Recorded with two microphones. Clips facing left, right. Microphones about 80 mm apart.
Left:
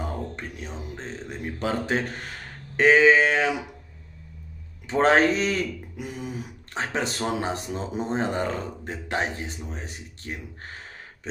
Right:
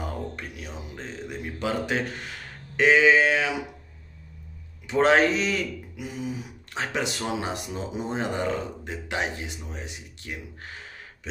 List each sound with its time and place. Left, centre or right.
0.4 s a man's voice: left
4.8 s a man's voice: left
6.7 s a man's voice: left